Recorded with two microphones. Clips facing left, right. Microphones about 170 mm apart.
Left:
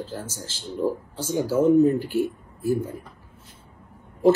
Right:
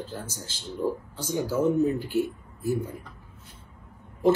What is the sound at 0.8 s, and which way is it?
Speech, 10° left (ahead or behind).